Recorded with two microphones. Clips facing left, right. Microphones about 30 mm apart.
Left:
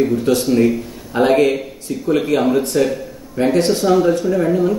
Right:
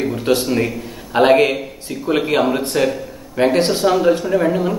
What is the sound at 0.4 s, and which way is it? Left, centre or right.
Speech, centre.